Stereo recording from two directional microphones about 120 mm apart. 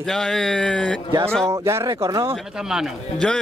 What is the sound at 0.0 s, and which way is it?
A man's voice, 5° left (ahead or behind).